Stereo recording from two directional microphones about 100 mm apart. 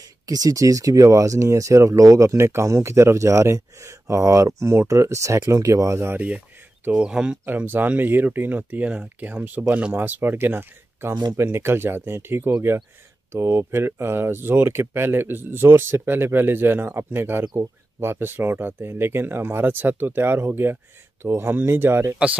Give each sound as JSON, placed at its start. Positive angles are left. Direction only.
{"t": 0.3, "sound": "speech", "side_deg": -35}